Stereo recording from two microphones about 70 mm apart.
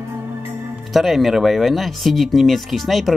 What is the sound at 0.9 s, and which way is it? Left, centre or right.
Speech, centre.